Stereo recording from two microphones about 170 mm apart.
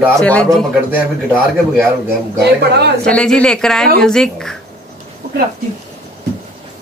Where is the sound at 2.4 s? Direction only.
75° right (ahead or behind).